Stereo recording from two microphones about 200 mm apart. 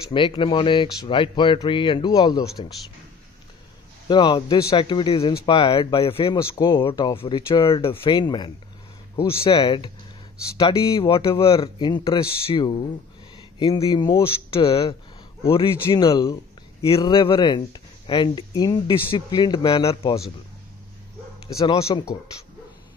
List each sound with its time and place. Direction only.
0.1 s speech: 25° left (ahead or behind)
4.1 s speech: 20° left (ahead or behind)
11.4 s speech: 30° left (ahead or behind)
14.5 s speech: 30° left (ahead or behind)
21.5 s speech: 15° left (ahead or behind)